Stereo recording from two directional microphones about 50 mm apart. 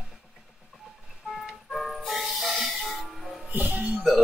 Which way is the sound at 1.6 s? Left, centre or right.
Centre.